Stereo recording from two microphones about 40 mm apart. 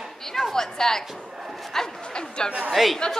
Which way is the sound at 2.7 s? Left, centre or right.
Centre.